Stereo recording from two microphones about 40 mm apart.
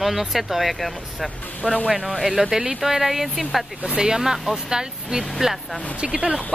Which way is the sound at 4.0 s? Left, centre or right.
Centre.